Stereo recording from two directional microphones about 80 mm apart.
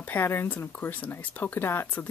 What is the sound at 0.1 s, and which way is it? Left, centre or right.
Speech, left.